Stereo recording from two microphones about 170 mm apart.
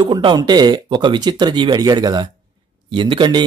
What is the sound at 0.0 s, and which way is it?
Speech, 25° right (ahead or behind).